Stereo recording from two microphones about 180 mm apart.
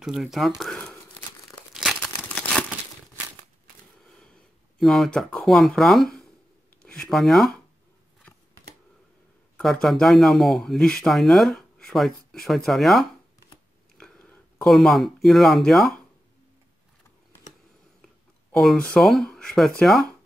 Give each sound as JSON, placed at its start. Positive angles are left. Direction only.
{"t": 0.0, "sound": "speech", "side_deg": 0}
{"t": 1.7, "sound": "crumpling", "side_deg": 0}
{"t": 4.7, "sound": "speech", "side_deg": 0}
{"t": 9.6, "sound": "speech", "side_deg": 0}
{"t": 13.9, "sound": "a sound", "side_deg": 5}
{"t": 18.0, "sound": "speech", "side_deg": 0}